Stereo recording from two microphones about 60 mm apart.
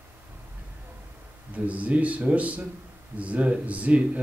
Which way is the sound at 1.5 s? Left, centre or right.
Right.